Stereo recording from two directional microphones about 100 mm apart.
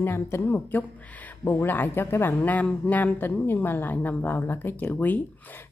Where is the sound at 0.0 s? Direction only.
25° left (ahead or behind).